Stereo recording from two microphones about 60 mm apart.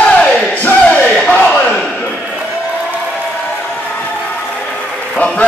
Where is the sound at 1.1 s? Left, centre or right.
Centre.